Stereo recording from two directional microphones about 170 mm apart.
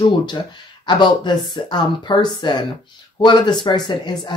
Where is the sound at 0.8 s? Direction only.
25° left (ahead or behind).